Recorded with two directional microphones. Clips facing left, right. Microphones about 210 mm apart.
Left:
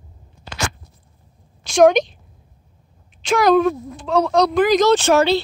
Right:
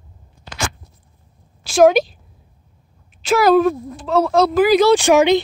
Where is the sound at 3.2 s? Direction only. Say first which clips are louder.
Right 2 dB; 5° right (ahead or behind).